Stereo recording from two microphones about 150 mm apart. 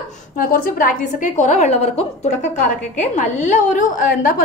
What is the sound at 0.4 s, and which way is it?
A woman's voice, 65° left (ahead or behind).